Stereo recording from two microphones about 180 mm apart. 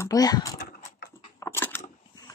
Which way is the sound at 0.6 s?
60° left (ahead or behind).